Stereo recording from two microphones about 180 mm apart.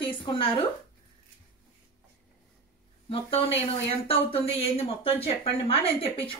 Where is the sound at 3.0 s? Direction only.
30° left (ahead or behind).